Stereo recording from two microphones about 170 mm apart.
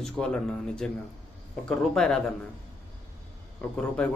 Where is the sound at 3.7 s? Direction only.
5° left (ahead or behind).